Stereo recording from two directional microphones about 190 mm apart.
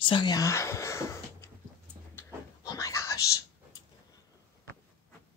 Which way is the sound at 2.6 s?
15° left (ahead or behind).